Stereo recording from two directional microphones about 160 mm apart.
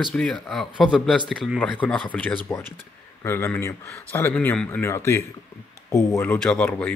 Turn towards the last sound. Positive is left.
turn(degrees=10)  # may be behind; listen again after turning